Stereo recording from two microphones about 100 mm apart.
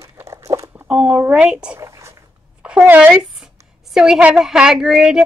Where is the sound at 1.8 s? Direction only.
30° right (ahead or behind).